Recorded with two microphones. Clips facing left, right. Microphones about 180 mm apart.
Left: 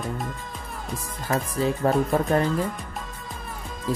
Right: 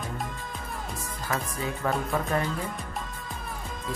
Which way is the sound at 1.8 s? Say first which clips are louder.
Left 5 dB; 35° left (ahead or behind).